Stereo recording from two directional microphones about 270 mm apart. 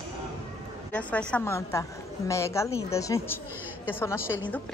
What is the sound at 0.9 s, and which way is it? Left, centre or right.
A woman's voice, centre.